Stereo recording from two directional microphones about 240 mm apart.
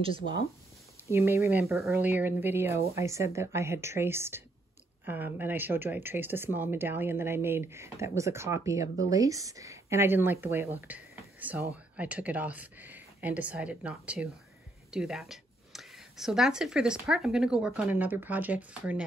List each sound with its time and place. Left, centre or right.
0.0 s speech: right
1.1 s speech: centre